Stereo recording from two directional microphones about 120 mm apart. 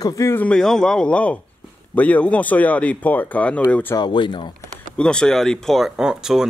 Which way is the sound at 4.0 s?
45° left (ahead or behind).